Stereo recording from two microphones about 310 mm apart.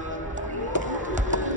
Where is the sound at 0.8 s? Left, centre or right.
Right.